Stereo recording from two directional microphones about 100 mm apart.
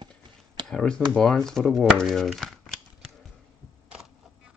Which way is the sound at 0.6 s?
5° left (ahead or behind).